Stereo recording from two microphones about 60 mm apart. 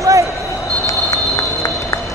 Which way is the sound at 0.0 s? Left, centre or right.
Right.